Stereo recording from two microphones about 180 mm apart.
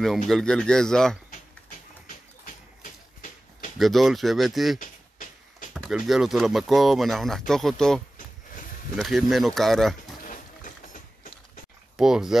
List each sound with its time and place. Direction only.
0.3 s speech: 5° left (ahead or behind)
2.8 s a sound: 45° left (ahead or behind)
3.7 s speech: centre (ahead or behind)
5.8 s speech: centre (ahead or behind)
10.2 s a sound: 45° left (ahead or behind)
12.0 s speech: 5° right (ahead or behind)